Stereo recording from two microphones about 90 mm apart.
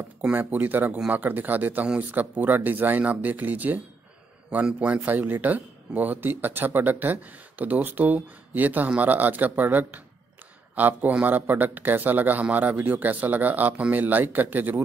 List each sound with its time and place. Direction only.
0.2 s speech: 20° right (ahead or behind)